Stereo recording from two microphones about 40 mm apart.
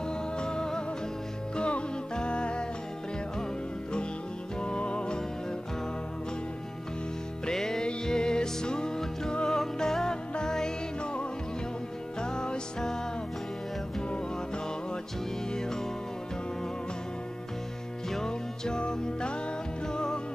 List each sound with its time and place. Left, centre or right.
0.0 s music: left
4.6 s music: left
7.5 s music: centre
12.2 s music: centre
15.5 s music: centre
18.1 s music: centre